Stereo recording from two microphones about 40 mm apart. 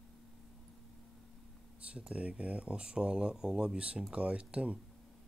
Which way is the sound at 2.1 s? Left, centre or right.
Right.